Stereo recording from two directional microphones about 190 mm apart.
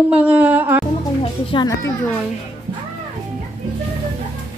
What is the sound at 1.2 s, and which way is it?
Speech, 25° left (ahead or behind).